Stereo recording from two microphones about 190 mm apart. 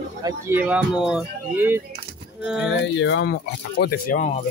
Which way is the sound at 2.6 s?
75° left (ahead or behind).